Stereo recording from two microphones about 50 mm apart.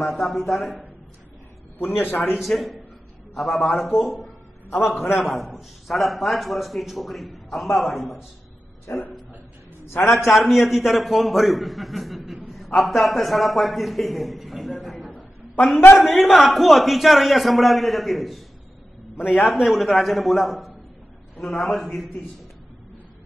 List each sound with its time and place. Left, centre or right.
0.0 s a man's voice: centre
1.8 s a man's voice: left
2.3 s a man's voice: centre
3.8 s a man's voice: centre
4.6 s a man's voice: left
5.1 s a man's voice: centre
8.9 s a man's voice: left
9.8 s a man's voice: left
10.1 s a man's voice: centre
15.9 s a man's voice: centre
19.1 s a man's voice: left
19.4 s a man's voice: centre